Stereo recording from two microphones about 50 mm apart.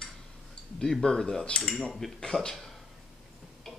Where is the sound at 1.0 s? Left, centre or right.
Centre.